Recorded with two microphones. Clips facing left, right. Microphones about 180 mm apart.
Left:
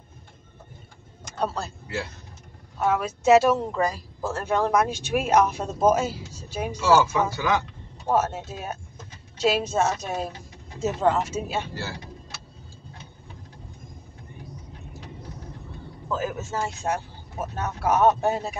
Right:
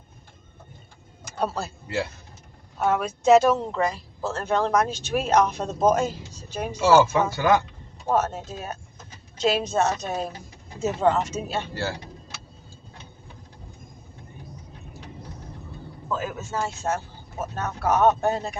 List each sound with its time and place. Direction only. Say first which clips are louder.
1.2 s vehicle: right 1 dB; 5° right (ahead or behind)
2.8 s speech: even; centre (ahead or behind)
6.8 s speech: right 2 dB; 60° right (ahead or behind)
8.1 s speech: even; 5° left (ahead or behind)
16.1 s speech: left 1 dB; 20° left (ahead or behind)